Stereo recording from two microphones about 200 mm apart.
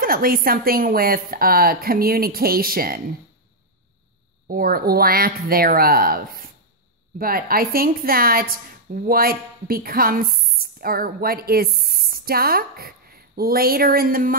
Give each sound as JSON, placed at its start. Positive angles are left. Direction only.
{"t": 0.0, "sound": "a woman's voice", "side_deg": -45}
{"t": 4.5, "sound": "a woman's voice", "side_deg": -45}